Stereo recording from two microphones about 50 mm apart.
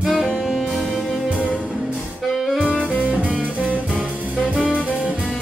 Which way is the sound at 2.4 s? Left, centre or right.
Centre.